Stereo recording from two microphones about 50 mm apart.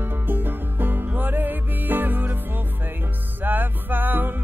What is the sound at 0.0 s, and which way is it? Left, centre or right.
Music, right.